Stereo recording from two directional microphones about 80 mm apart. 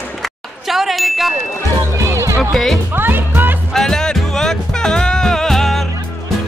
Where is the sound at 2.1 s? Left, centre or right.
Right.